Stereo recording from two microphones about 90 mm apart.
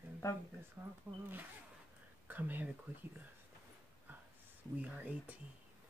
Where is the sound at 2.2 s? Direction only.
20° right (ahead or behind).